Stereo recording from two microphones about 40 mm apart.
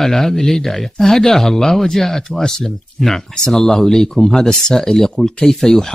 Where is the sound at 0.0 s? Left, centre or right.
Centre.